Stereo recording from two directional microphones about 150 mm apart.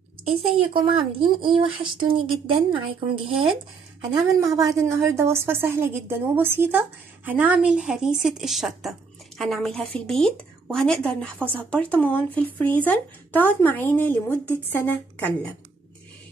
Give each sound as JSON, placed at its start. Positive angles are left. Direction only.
{"t": 0.3, "sound": "speech", "side_deg": -40}
{"t": 4.1, "sound": "a woman's voice", "side_deg": -25}